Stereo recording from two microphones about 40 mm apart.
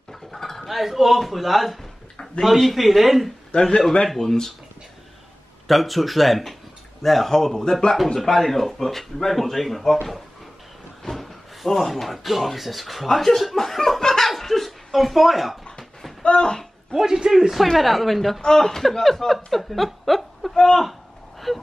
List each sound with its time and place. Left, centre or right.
0.1 s a sound: centre
0.7 s speech: centre
5.7 s speech: centre
11.0 s speech: centre
16.2 s speech: left
16.9 s speech: centre
18.4 s speech: centre
20.5 s speech: centre
21.5 s speech: centre